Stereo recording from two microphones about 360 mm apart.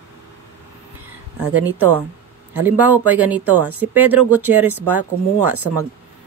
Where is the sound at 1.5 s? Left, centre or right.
Centre.